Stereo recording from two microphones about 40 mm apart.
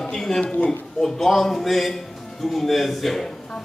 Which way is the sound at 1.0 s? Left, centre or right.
Centre.